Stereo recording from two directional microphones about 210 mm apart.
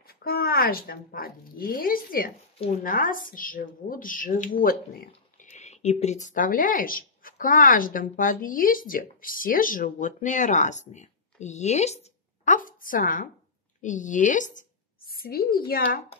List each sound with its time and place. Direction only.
0.2 s a woman's voice: 45° left (ahead or behind)